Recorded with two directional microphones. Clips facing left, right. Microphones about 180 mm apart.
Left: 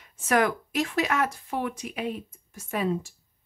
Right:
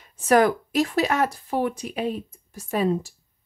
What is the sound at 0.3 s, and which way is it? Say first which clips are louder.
Speech: right 6 dB; 35° right (ahead or behind).